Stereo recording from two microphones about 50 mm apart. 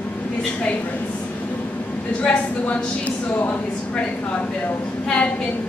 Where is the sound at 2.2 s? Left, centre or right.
Left.